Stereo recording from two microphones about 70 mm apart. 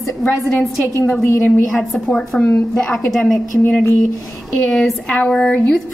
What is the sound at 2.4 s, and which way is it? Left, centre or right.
Speech, left.